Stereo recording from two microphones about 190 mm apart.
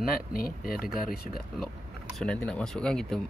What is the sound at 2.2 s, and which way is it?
Speech, 5° left (ahead or behind).